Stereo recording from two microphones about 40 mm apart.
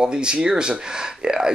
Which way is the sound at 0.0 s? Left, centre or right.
Right.